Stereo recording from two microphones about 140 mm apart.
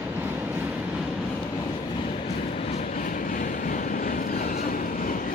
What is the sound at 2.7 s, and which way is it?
Vehicle, 60° left (ahead or behind).